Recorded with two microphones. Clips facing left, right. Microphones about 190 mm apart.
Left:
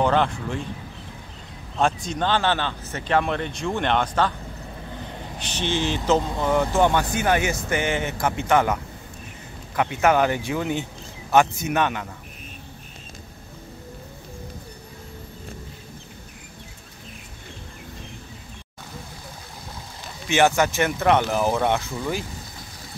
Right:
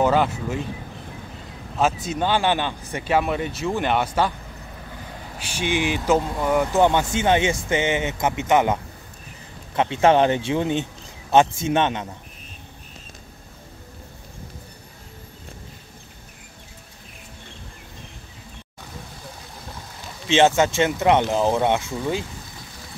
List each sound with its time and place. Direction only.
0.0 s speech: 5° right (ahead or behind)
1.8 s speech: 5° right (ahead or behind)
5.4 s speech: 10° right (ahead or behind)
9.8 s speech: 25° right (ahead or behind)
20.2 s speech: 25° right (ahead or behind)